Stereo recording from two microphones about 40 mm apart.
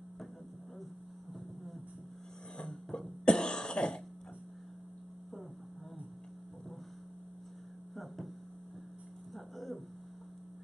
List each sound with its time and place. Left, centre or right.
2.9 s cough: left
7.9 s a sound: centre
9.3 s music: centre